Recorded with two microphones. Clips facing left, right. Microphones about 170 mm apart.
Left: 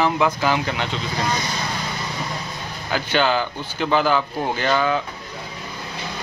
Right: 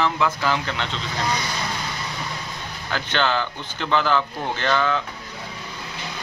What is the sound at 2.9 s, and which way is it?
Speech, 10° left (ahead or behind).